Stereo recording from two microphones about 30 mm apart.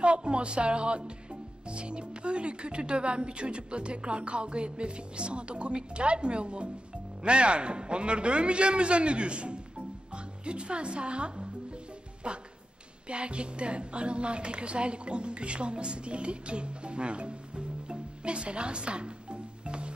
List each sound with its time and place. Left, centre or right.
0.0 s a man's voice: right